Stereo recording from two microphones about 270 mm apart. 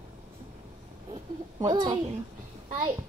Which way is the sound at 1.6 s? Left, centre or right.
Centre.